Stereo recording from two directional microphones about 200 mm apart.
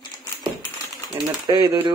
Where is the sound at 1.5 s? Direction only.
20° right (ahead or behind).